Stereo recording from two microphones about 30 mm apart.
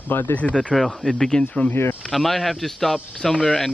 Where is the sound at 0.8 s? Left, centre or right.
Centre.